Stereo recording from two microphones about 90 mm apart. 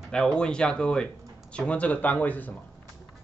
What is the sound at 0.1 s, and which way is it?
A man's voice, 10° left (ahead or behind).